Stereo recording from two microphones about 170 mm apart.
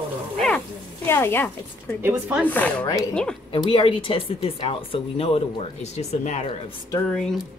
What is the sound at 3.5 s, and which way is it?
Speech, 30° left (ahead or behind).